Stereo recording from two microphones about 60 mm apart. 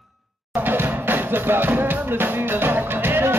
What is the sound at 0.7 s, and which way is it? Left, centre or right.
Music, right.